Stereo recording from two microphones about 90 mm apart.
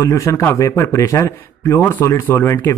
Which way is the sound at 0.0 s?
35° left (ahead or behind).